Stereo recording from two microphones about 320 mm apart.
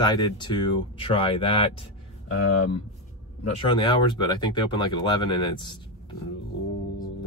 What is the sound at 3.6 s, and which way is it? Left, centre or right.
Speech, centre.